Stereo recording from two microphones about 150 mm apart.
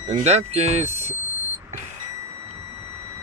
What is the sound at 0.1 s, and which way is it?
Speech, 45° right (ahead or behind).